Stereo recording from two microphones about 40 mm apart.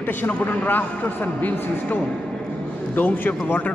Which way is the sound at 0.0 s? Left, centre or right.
Left.